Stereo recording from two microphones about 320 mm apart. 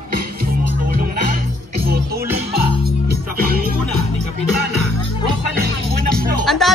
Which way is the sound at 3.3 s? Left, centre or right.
Right.